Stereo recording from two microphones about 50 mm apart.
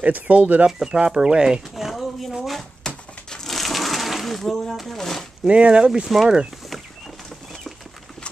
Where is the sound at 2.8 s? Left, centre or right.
Centre.